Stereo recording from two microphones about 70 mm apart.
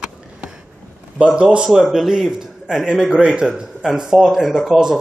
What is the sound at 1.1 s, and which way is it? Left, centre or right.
Speech, centre.